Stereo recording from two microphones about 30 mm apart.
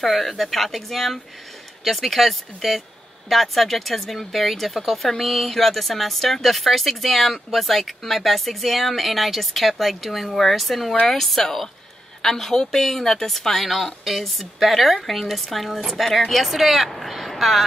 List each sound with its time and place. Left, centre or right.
0.0 s a woman's voice: centre